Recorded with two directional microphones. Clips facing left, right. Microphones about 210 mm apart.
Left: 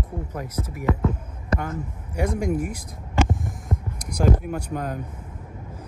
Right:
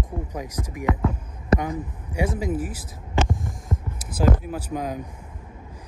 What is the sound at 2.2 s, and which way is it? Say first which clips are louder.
Speech: left 4 dB; 5° right (ahead or behind).